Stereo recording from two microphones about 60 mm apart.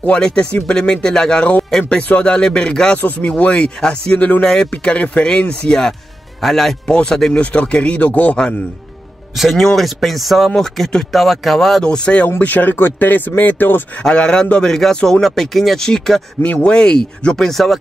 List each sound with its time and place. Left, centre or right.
0.0 s speech: centre
1.7 s speech: centre
2.0 s speech: left
3.0 s speech: left
9.6 s speech: centre
11.8 s speech: centre; by 13.8 s left
14.0 s speech: centre
16.4 s speech: left; by 17.7 s centre